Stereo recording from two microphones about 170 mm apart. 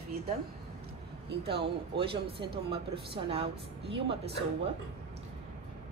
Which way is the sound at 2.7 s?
30° right (ahead or behind).